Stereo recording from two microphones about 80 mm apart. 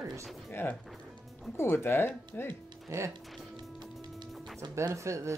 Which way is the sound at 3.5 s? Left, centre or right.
Right.